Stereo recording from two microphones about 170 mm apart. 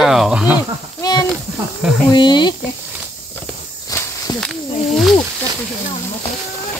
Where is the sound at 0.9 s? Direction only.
25° left (ahead or behind).